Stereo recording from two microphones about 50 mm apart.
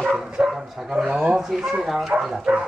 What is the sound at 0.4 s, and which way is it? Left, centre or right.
Speech, centre.